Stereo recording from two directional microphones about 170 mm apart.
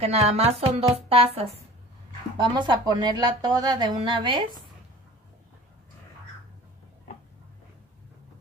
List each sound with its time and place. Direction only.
0.0 s speech: 35° right (ahead or behind)